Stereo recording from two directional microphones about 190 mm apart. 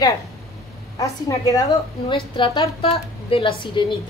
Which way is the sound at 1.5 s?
20° left (ahead or behind).